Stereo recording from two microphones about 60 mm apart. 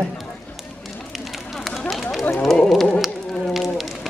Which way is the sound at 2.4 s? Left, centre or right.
Centre.